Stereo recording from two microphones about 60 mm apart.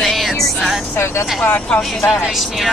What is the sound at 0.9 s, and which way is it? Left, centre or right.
Speech, left.